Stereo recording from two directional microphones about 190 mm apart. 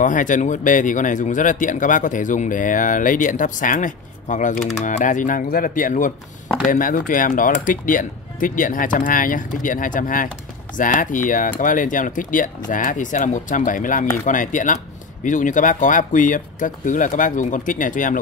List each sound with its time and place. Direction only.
0.0 s speech: 45° left (ahead or behind)